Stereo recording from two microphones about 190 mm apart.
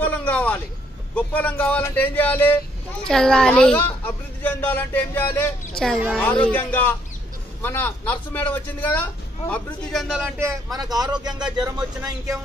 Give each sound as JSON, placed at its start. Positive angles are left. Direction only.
{"t": 0.0, "sound": "a sound", "side_deg": 5}
{"t": 1.1, "sound": "speech", "side_deg": 10}
{"t": 6.4, "sound": "speech", "side_deg": 10}
{"t": 9.9, "sound": "speech", "side_deg": -5}